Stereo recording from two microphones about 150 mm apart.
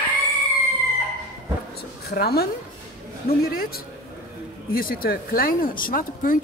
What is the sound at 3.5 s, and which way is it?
A man's voice, 80° left.